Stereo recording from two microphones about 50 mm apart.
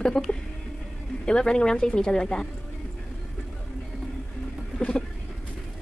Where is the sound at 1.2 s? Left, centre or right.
Centre.